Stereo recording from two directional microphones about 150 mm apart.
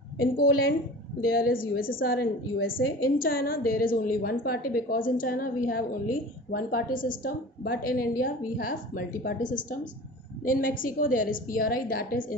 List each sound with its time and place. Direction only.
1.3 s a woman's voice: 80° left